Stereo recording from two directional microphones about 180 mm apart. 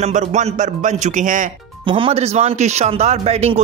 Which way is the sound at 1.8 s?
30° right (ahead or behind).